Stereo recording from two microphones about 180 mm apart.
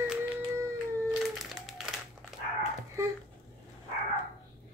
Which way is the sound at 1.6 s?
Centre (ahead or behind).